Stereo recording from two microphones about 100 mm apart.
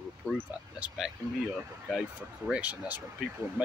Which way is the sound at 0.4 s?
15° right (ahead or behind).